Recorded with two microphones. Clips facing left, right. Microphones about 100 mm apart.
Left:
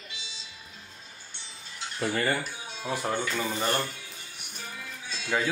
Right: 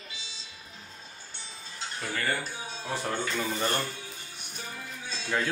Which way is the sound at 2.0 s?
25° left (ahead or behind).